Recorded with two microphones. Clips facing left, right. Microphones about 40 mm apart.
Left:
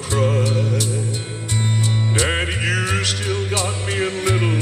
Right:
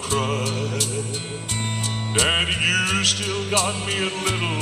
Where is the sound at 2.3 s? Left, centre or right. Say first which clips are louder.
Right 1 dB; centre.